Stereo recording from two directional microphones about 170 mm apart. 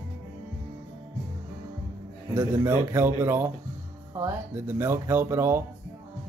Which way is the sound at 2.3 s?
15° right (ahead or behind).